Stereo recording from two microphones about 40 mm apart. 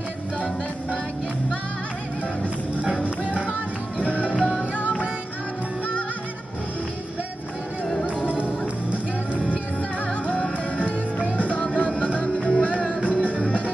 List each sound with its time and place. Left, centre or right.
2.8 s music: right
4.4 s music: left
7.8 s music: centre
8.2 s music: right
10.0 s music: left
13.0 s music: right